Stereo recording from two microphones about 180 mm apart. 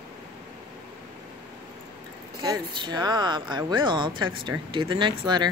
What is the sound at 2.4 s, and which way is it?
Speech, 20° right (ahead or behind).